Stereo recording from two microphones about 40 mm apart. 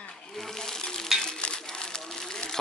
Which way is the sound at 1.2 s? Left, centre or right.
Left.